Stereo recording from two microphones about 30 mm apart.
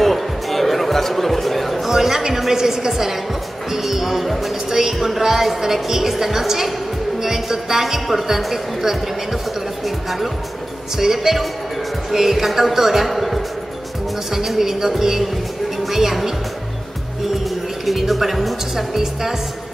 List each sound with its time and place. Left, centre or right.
0.0 s music: centre
1.9 s music: centre
2.5 s a woman's voice: centre
3.7 s music: centre
5.0 s a woman's voice: centre
7.2 s music: centre
9.8 s a woman's voice: centre
12.4 s a woman's voice: centre
13.1 s music: centre
14.3 s a woman's voice: centre
17.8 s a woman's voice: centre